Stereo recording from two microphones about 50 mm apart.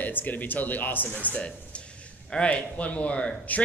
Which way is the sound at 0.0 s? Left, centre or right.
Left.